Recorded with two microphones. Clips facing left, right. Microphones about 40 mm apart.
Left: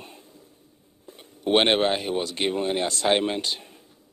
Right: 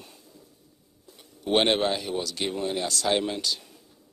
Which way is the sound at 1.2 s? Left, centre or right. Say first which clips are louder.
Left 3 dB; left.